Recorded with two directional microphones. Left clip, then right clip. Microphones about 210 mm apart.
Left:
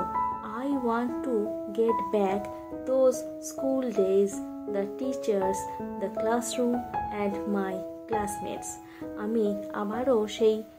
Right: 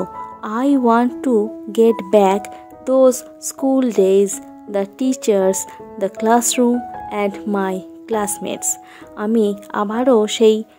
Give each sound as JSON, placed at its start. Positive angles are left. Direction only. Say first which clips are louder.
{"t": 0.4, "sound": "speech", "louder": "right 13 dB", "side_deg": -50}